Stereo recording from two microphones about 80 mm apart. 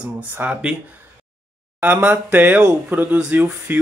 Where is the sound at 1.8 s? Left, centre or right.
Right.